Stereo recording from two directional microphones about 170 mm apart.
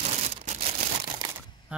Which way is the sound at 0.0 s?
40° right (ahead or behind).